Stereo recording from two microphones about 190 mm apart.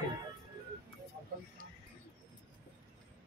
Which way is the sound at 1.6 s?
45° right (ahead or behind).